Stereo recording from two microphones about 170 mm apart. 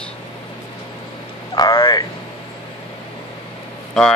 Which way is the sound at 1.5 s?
20° left (ahead or behind).